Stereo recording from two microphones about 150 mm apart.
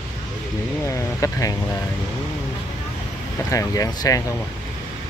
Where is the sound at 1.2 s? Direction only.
20° left (ahead or behind).